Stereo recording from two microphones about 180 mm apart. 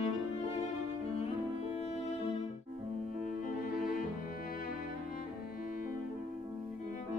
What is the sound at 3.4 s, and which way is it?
Music, 50° left (ahead or behind).